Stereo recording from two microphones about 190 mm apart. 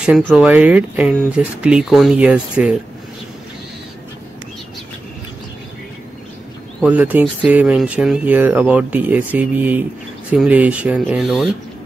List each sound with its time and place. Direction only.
0.4 s speech: 5° right (ahead or behind)
6.8 s speech: 10° right (ahead or behind)